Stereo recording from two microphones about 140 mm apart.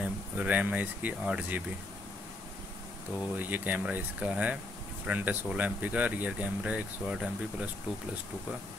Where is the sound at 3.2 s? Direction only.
10° right (ahead or behind).